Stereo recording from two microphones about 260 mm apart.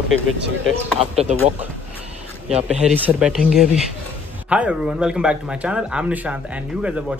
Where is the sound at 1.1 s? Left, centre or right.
Right.